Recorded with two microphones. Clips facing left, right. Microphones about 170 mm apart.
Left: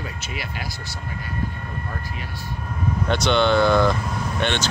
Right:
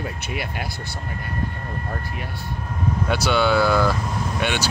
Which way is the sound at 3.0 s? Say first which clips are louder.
Left 1 dB; 5° right (ahead or behind).